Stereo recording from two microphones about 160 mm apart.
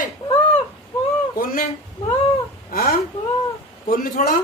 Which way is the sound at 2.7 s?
70° left (ahead or behind).